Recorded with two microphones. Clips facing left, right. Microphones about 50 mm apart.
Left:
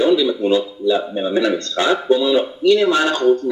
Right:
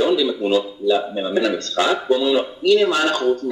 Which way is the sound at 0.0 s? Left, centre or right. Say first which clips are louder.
Left 3 dB; left.